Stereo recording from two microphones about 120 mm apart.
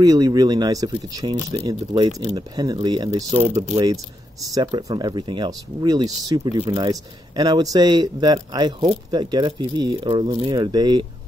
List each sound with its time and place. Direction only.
0.0 s speech: 30° right (ahead or behind)